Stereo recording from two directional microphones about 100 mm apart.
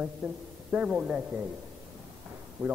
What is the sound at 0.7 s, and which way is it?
Speech, 10° right (ahead or behind).